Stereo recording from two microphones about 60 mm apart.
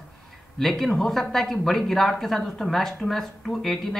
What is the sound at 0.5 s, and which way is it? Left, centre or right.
A woman's voice, centre.